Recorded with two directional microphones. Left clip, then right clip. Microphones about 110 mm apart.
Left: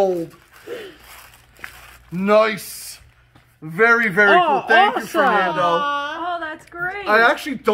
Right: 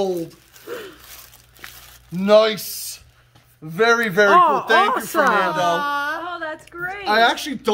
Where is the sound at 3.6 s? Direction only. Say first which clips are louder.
Left 2 dB; 55° right (ahead or behind).